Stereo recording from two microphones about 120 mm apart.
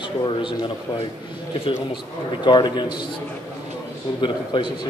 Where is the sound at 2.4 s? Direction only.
40° left (ahead or behind).